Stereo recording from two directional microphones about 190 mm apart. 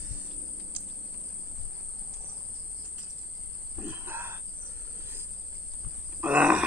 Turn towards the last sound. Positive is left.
turn(degrees=-5)  # may be behind; listen again after turning